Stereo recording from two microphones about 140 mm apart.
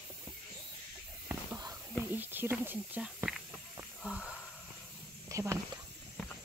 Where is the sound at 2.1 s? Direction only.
15° right (ahead or behind).